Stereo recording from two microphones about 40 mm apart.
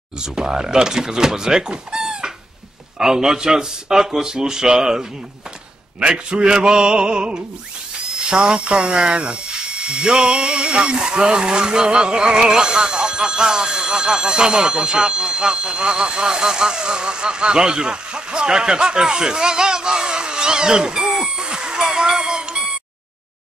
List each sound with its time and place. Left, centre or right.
0.2 s speech: centre